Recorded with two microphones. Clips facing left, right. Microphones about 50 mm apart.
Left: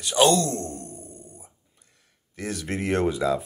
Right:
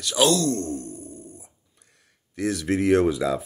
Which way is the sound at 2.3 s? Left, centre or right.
Centre.